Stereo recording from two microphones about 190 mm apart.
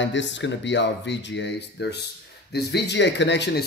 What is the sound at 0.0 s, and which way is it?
Speech, 70° left (ahead or behind).